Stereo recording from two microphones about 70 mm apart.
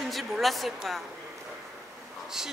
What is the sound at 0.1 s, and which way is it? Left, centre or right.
Speech, centre.